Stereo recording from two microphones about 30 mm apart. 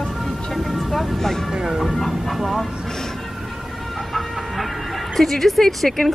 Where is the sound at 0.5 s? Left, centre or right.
Centre.